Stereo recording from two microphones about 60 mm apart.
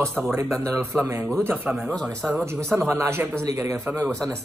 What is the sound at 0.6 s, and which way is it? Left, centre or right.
Mantra, right.